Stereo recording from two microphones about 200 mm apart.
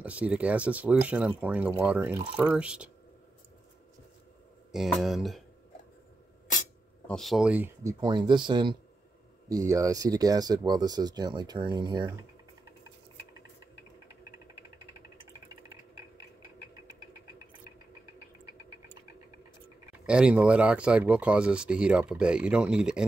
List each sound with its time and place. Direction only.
0.0 s speech: 5° right (ahead or behind)
4.7 s speech: centre (ahead or behind)
7.1 s speech: centre (ahead or behind)
8.0 s speech: 25° right (ahead or behind)
20.1 s speech: 5° right (ahead or behind)